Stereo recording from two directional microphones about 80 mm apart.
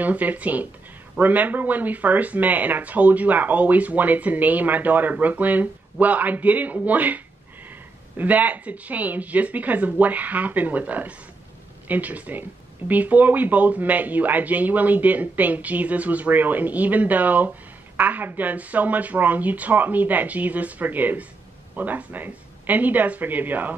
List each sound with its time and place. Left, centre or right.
0.0 s speech: right
8.2 s speech: centre